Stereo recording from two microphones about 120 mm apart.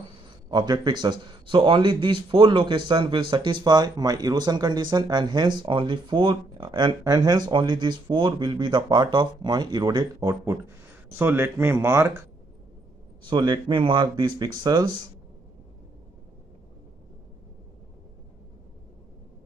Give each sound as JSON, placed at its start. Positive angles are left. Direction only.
{"t": 0.5, "sound": "a man's voice", "side_deg": -40}
{"t": 10.2, "sound": "speech", "side_deg": -20}
{"t": 13.2, "sound": "a man's voice", "side_deg": -40}